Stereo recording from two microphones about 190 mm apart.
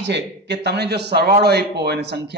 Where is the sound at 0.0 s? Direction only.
65° right (ahead or behind).